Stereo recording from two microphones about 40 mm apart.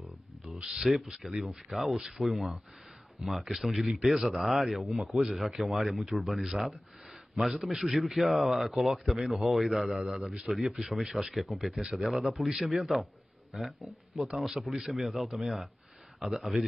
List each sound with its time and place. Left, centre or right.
1.0 s a man's voice: centre
2.0 s speech: centre
2.2 s a man's voice: centre
5.9 s a man's voice: centre